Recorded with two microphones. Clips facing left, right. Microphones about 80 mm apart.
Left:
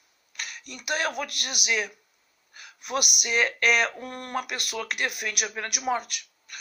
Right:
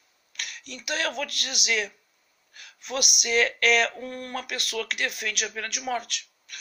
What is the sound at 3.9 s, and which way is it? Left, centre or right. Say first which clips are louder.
Speech: left 2 dB; left.